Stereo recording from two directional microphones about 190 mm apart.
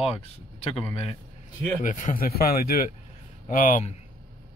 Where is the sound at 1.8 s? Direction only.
45° left (ahead or behind).